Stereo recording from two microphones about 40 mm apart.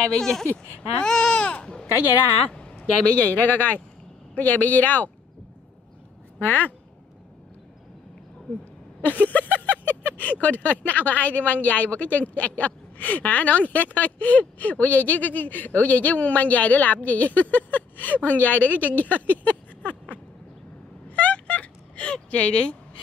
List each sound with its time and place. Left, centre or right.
0.2 s babbling: centre
1.5 s speech: left
2.8 s speech: left
3.3 s speech: left
6.4 s speech: left
9.0 s speech: left
21.2 s a sound: left